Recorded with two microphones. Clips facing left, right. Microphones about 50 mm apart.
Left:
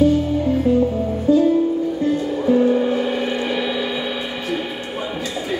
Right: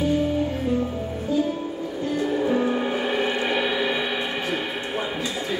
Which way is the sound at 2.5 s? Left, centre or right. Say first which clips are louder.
Left 7 dB; centre.